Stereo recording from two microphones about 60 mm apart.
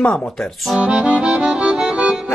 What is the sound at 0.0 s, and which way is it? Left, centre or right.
Speech, left.